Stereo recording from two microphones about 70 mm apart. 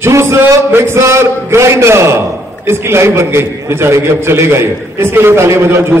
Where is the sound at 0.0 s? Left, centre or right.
Right.